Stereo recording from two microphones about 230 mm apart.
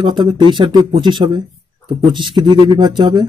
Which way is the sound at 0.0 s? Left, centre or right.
Right.